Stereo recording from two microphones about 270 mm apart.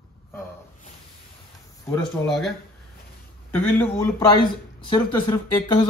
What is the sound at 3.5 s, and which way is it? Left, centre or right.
Speech, centre.